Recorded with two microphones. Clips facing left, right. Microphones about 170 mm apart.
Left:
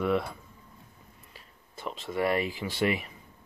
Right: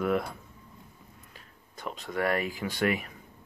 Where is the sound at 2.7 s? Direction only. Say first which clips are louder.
Right 1 dB; 45° right (ahead or behind).